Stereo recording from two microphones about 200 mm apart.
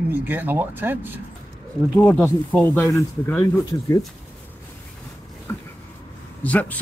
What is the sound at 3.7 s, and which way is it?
Speech, 15° left (ahead or behind).